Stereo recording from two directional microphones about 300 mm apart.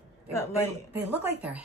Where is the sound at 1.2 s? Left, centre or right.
Centre.